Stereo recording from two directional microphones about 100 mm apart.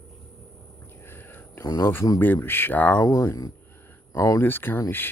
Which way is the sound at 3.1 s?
35° left (ahead or behind).